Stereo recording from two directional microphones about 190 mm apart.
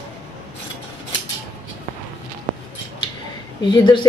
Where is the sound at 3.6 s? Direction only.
25° left (ahead or behind).